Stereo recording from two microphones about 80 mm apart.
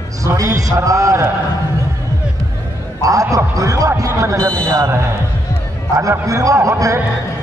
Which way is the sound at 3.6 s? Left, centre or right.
Right.